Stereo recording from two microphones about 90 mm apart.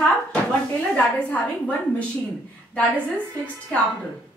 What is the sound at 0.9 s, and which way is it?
A woman's voice, 15° left (ahead or behind).